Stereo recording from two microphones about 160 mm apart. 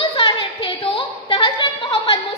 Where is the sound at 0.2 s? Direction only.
35° left (ahead or behind).